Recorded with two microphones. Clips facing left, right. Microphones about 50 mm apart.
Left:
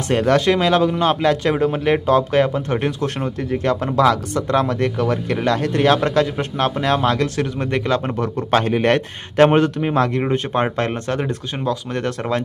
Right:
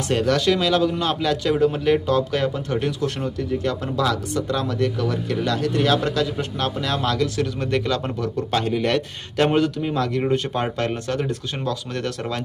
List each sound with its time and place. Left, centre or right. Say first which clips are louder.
0.1 s a man's voice: left 4 dB; left
7.7 s a man's voice: left 4 dB; left